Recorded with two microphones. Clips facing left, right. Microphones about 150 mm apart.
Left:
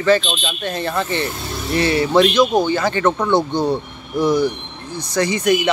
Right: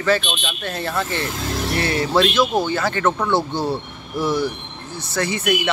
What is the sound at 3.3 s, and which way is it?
A man's voice, 5° right (ahead or behind).